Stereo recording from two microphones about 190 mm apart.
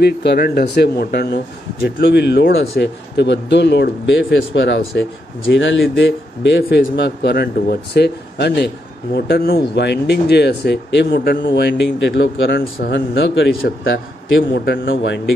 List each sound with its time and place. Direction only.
0.0 s speech: 60° left (ahead or behind)
12.9 s a man's voice: 70° left (ahead or behind)